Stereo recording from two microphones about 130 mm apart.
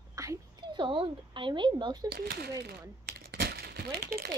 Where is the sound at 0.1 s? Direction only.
25° right (ahead or behind).